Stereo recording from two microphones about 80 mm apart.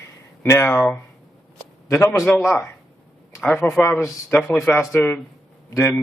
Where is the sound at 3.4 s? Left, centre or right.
Left.